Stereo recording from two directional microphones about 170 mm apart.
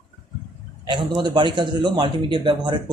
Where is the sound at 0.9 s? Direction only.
30° right (ahead or behind).